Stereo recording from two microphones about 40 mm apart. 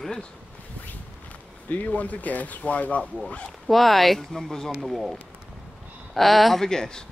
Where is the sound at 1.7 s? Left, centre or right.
Left.